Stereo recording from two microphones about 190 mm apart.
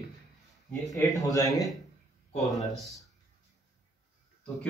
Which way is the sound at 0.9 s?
20° left (ahead or behind).